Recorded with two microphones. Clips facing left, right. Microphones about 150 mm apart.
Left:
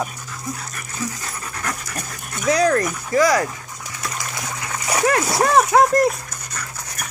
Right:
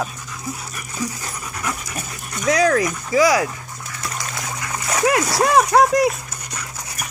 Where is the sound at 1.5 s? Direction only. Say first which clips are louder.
Right 1 dB; 10° right (ahead or behind).